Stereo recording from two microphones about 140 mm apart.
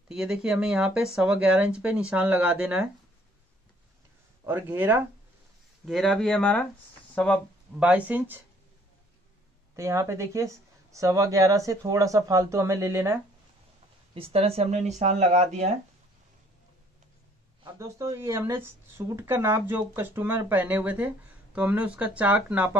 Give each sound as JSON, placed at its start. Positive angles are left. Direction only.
{"t": 0.1, "sound": "speech", "side_deg": -5}
{"t": 4.5, "sound": "speech", "side_deg": -10}
{"t": 5.9, "sound": "speech", "side_deg": 0}
{"t": 7.8, "sound": "speech", "side_deg": -10}
{"t": 9.8, "sound": "speech", "side_deg": -20}
{"t": 14.1, "sound": "speech", "side_deg": -45}
{"t": 17.6, "sound": "speech", "side_deg": -20}